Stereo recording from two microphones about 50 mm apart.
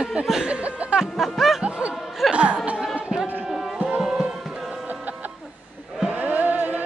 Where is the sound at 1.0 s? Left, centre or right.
Centre.